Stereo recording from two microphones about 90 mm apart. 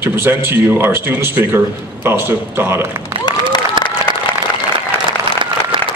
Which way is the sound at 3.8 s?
60° right (ahead or behind).